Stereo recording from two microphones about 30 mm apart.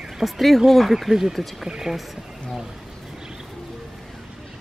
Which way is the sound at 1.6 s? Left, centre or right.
Centre.